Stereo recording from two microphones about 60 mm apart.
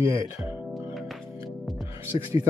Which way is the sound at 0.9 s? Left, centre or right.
Centre.